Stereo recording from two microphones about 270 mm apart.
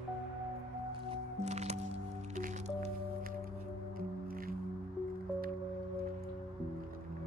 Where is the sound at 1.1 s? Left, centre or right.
Right.